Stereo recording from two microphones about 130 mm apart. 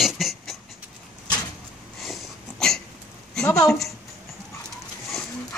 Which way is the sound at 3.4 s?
25° left (ahead or behind).